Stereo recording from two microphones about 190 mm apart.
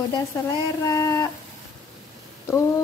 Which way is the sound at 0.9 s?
15° left (ahead or behind).